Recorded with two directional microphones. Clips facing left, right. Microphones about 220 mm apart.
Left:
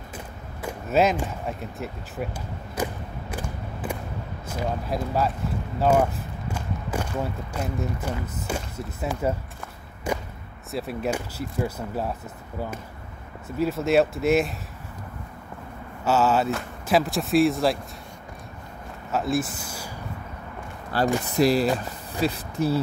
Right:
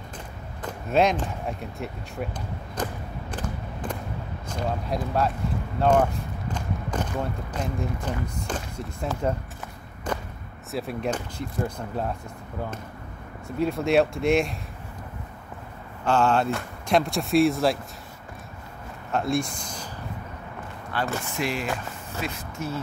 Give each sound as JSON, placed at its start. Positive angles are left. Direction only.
{"t": 0.6, "sound": "a sound", "side_deg": 5}
{"t": 2.7, "sound": "a sound", "side_deg": 10}
{"t": 4.5, "sound": "speech", "side_deg": 5}
{"t": 5.8, "sound": "walk", "side_deg": 5}
{"t": 7.5, "sound": "speech", "side_deg": 10}
{"t": 10.1, "sound": "a sound", "side_deg": 10}
{"t": 10.7, "sound": "speech", "side_deg": 0}
{"t": 13.6, "sound": "speech", "side_deg": 0}
{"t": 16.0, "sound": "speech", "side_deg": 5}
{"t": 19.1, "sound": "speech", "side_deg": 5}
{"t": 20.9, "sound": "speech", "side_deg": 35}